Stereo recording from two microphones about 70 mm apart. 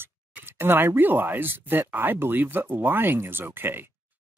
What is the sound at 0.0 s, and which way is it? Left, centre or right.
Speech, right.